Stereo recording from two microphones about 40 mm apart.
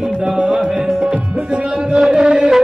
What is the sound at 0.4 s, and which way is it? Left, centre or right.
Music, right.